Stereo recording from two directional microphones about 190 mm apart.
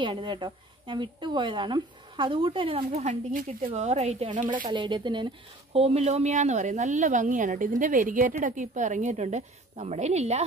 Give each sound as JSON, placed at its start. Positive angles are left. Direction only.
{"t": 0.0, "sound": "a woman's voice", "side_deg": -25}